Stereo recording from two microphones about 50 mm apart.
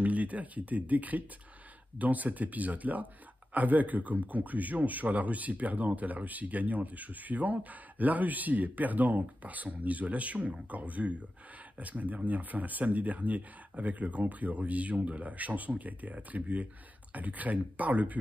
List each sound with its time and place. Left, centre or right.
0.0 s speech: right